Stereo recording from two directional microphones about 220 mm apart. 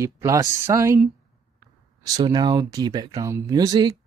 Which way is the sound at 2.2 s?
20° right (ahead or behind).